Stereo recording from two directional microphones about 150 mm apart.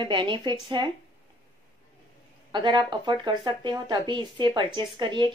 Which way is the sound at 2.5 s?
30° right (ahead or behind).